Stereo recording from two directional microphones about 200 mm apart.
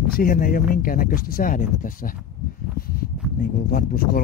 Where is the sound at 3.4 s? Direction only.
50° left (ahead or behind).